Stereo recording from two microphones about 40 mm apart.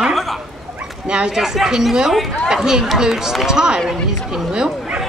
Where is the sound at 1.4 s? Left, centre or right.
Centre.